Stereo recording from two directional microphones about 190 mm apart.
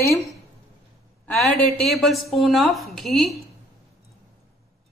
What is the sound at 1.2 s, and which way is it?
A woman's voice, centre (ahead or behind).